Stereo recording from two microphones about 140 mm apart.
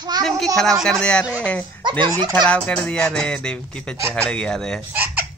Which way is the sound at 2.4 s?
5° left (ahead or behind).